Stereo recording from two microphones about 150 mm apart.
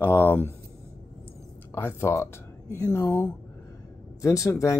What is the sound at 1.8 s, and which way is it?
Speech, 15° left (ahead or behind).